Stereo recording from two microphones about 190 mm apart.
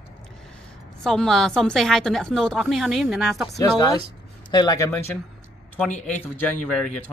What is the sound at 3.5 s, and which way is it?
Speech, 20° left (ahead or behind).